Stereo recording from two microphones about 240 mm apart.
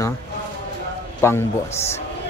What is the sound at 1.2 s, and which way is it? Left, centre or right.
Speech, centre.